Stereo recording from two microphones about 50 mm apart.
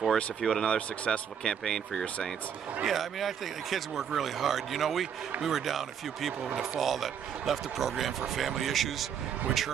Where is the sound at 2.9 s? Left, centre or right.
Centre.